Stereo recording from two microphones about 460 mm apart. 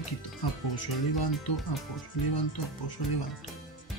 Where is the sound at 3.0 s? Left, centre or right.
Left.